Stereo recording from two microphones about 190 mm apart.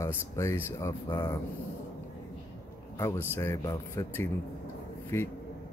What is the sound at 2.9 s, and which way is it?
Speech, 15° left (ahead or behind).